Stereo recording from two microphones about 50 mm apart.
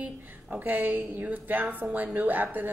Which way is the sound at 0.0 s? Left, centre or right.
Right.